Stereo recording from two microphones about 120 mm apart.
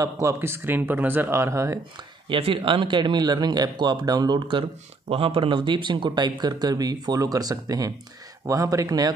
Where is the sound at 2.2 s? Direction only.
45° right (ahead or behind).